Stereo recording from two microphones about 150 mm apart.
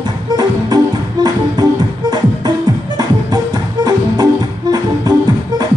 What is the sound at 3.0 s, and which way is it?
Music, 25° right (ahead or behind).